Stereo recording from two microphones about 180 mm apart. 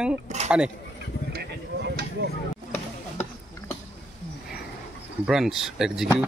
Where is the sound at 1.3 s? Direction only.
65° right (ahead or behind).